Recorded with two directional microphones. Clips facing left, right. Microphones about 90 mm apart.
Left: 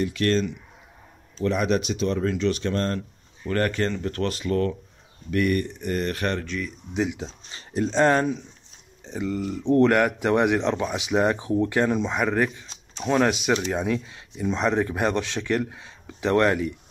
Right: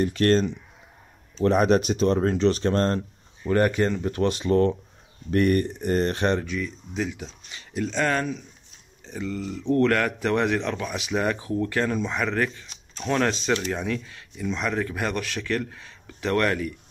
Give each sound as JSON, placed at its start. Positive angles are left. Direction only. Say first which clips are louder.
{"t": 0.0, "sound": "speech", "louder": "right 2 dB", "side_deg": -40}
{"t": 3.4, "sound": "speech", "louder": "right 3 dB", "side_deg": -15}
{"t": 6.4, "sound": "speech", "louder": "right 1 dB", "side_deg": -5}
{"t": 6.9, "sound": "speech", "louder": "left 6 dB", "side_deg": 20}
{"t": 7.2, "sound": "speech", "louder": "left 1 dB", "side_deg": 35}
{"t": 9.0, "sound": "speech", "louder": "left 3 dB", "side_deg": 15}